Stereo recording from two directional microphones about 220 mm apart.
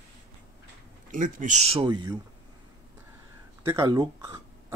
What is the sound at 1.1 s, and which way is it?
Speech, 35° right (ahead or behind).